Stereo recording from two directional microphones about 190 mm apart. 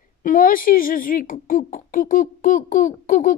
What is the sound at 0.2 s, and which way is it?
A child's voice, 50° left (ahead or behind).